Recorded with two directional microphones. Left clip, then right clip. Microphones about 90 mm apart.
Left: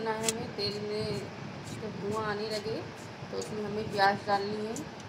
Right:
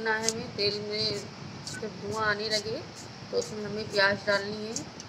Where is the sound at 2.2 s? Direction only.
15° left (ahead or behind).